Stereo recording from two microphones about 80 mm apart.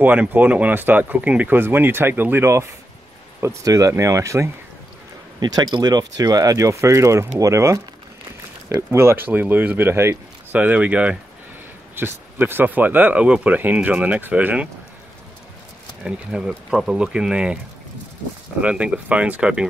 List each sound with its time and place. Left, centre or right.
0.0 s speech: right
3.3 s speech: right
5.4 s speech: right
10.6 s speech: centre
11.9 s speech: right
16.0 s speech: centre
18.6 s speech: centre